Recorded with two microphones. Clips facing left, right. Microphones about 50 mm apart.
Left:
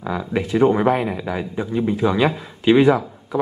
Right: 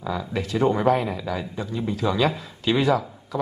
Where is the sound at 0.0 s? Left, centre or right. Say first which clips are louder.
Left 4 dB; left.